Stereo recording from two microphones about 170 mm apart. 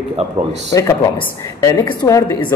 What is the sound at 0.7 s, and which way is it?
A man's voice, 20° left (ahead or behind).